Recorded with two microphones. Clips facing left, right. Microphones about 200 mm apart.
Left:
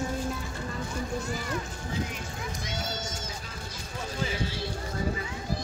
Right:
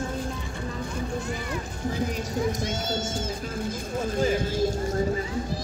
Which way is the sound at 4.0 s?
45° right (ahead or behind).